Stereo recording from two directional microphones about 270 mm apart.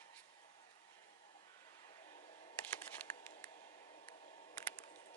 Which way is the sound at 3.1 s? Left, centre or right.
Centre.